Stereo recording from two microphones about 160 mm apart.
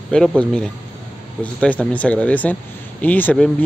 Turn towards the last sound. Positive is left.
turn(degrees=10)  # may be behind; listen again after turning